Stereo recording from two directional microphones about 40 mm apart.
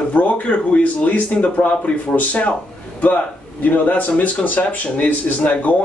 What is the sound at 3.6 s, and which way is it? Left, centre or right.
Speech, left.